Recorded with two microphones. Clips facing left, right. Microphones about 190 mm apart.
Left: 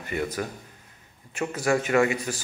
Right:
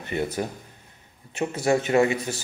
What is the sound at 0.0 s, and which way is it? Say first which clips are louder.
A man's voice: right 2 dB; 25° right (ahead or behind).